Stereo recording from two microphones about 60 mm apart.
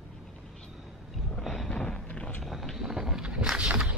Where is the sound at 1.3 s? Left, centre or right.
Centre.